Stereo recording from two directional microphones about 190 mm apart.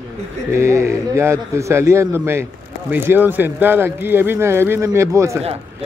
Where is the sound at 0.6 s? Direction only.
15° right (ahead or behind).